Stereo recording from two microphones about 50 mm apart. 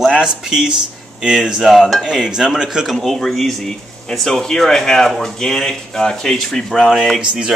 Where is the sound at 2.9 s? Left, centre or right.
Centre.